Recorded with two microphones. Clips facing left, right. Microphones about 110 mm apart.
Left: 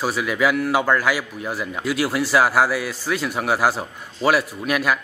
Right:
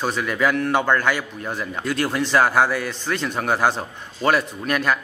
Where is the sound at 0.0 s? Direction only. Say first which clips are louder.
Left 1 dB; 5° left (ahead or behind).